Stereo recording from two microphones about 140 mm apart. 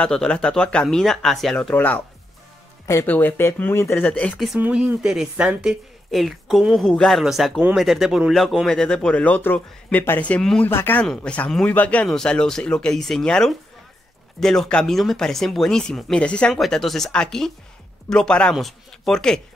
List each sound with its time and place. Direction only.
0.0 s speech: 5° left (ahead or behind)
4.1 s speech: 5° left (ahead or behind)
4.6 s speech: 10° right (ahead or behind); by 19.4 s 5° left (ahead or behind)